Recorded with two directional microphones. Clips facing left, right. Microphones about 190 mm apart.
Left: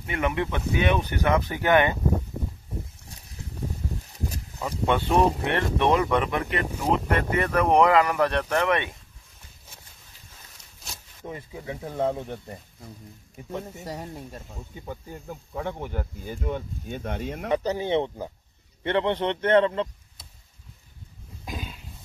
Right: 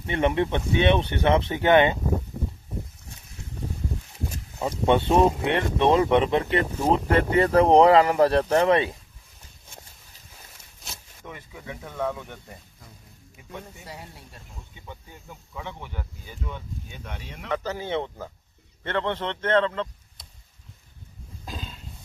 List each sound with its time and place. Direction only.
0.0 s speech: 30° right (ahead or behind)
4.6 s speech: 30° right (ahead or behind)
10.6 s a sound: centre (ahead or behind)
11.2 s speech: 30° left (ahead or behind)
13.4 s speech: 40° left (ahead or behind)
17.5 s a man's voice: 20° left (ahead or behind)
21.5 s a sound: 10° left (ahead or behind)